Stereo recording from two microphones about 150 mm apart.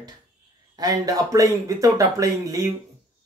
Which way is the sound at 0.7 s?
25° right (ahead or behind).